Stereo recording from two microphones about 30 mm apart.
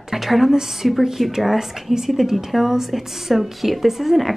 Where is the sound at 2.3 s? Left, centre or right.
Centre.